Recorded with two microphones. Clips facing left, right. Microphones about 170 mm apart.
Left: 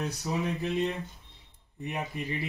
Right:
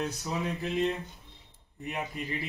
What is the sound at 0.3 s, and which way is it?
Speech, 20° left (ahead or behind).